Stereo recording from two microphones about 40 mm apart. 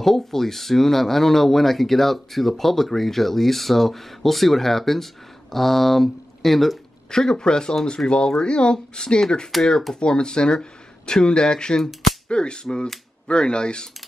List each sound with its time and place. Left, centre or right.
0.0 s speech: centre
7.1 s speech: centre
9.5 s speech: centre
9.9 s speech: left
11.8 s speech: centre
12.3 s speech: left